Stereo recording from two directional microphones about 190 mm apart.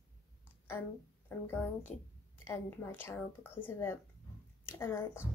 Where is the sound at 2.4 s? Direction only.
15° left (ahead or behind).